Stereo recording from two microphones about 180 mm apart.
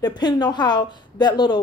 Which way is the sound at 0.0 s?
20° left (ahead or behind).